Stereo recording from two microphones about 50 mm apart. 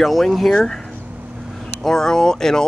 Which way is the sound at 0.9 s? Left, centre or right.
Right.